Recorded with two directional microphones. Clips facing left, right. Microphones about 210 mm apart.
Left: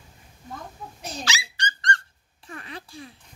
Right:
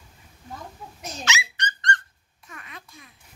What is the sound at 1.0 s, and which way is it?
Squeak, 35° left (ahead or behind).